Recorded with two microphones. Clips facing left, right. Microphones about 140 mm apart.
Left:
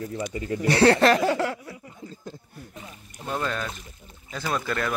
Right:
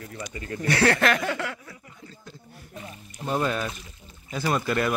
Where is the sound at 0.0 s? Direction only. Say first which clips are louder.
Left 6 dB; 25° left (ahead or behind).